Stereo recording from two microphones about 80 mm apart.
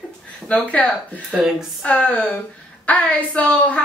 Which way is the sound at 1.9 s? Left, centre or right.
Centre.